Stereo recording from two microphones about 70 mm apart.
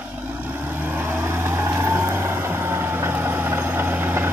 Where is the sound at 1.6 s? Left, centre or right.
Right.